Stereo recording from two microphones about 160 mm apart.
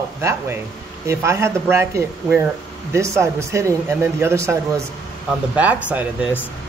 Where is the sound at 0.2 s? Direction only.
15° right (ahead or behind).